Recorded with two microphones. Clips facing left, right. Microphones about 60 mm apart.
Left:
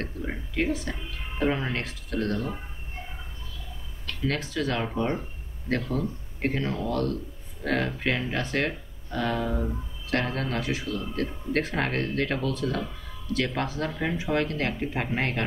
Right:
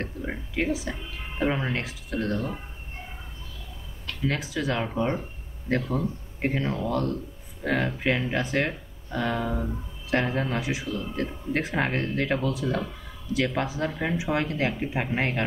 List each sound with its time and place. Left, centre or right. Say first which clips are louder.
0.0 s a sound: right 1 dB; centre
1.4 s speech: even; centre
4.3 s speech: even; centre
6.4 s speech: right 1 dB; centre